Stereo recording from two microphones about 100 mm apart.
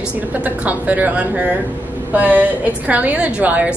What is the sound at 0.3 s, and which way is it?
A woman's voice, 15° right (ahead or behind).